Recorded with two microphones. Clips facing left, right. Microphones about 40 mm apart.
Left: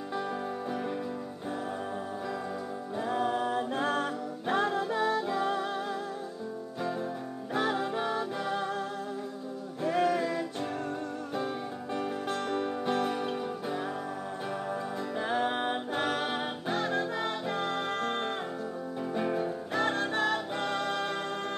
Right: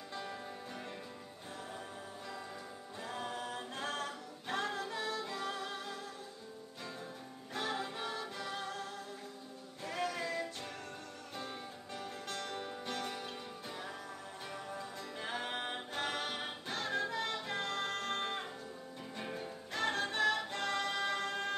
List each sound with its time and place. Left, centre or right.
3.0 s music: left
6.8 s music: centre
9.8 s music: centre
15.1 s music: centre